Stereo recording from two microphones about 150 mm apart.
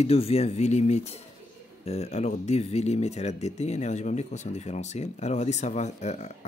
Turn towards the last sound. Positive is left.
turn(degrees=50)  # may be behind; listen again after turning